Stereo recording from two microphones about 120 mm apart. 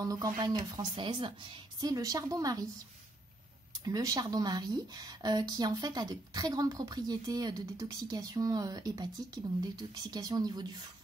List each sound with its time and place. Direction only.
0.0 s speech: 30° right (ahead or behind)
3.8 s speech: 30° right (ahead or behind)